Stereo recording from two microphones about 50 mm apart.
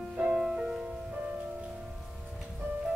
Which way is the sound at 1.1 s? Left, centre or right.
Right.